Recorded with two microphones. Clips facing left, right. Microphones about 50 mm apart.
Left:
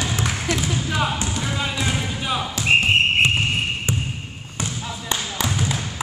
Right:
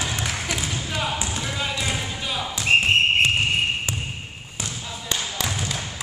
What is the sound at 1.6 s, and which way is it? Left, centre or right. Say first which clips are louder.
Basketball bounce: left 1 dB; centre.